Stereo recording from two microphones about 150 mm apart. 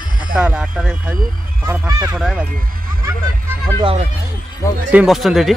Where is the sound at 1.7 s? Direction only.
20° right (ahead or behind).